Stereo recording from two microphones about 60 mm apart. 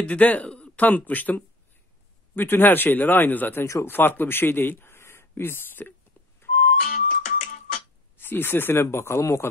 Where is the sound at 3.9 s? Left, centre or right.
Left.